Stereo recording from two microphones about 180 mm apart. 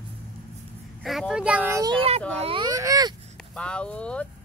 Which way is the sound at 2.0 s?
35° right (ahead or behind).